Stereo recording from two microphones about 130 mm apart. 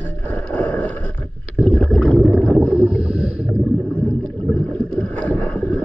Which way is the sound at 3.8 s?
10° left (ahead or behind).